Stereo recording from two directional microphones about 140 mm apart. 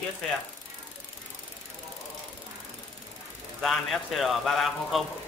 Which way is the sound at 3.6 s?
Centre (ahead or behind).